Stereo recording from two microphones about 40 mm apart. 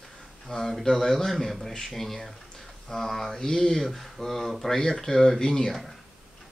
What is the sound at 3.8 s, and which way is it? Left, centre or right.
Speech, centre.